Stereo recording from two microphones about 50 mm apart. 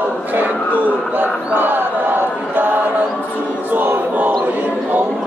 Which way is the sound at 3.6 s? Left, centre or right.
Right.